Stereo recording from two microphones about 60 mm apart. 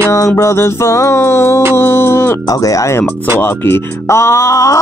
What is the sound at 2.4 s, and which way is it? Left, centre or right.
Speech, left.